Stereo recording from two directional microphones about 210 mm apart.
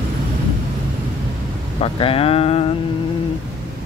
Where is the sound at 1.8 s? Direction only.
25° left (ahead or behind).